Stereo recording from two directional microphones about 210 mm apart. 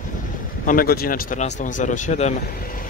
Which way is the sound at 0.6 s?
40° left (ahead or behind).